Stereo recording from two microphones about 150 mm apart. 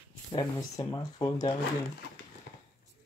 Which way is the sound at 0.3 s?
30° left (ahead or behind).